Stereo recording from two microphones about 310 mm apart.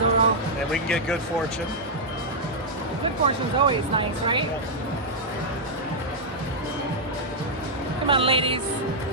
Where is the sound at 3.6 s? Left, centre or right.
Centre.